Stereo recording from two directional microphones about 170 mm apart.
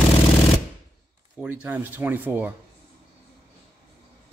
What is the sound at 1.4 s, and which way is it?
Speech, 10° right (ahead or behind).